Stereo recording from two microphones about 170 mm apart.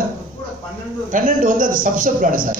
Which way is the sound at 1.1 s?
50° right (ahead or behind).